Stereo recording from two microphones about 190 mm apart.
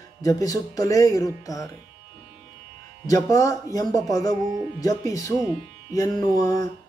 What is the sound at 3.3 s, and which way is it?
Speech, 15° left (ahead or behind).